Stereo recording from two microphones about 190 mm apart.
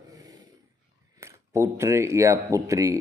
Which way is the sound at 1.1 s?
15° right (ahead or behind).